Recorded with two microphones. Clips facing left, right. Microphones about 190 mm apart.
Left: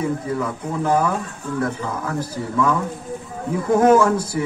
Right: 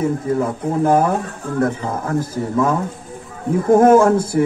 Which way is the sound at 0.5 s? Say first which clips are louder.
Right 4 dB; 50° right (ahead or behind).